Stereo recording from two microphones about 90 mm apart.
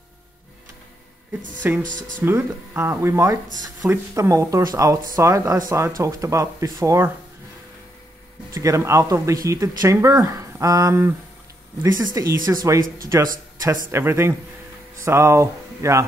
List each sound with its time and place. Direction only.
1.6 s speech: 20° right (ahead or behind)
8.5 s speech: 35° right (ahead or behind)
13.7 s speech: 30° right (ahead or behind)